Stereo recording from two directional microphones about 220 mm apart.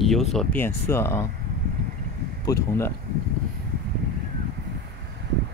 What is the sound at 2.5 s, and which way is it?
Speech, 15° left (ahead or behind).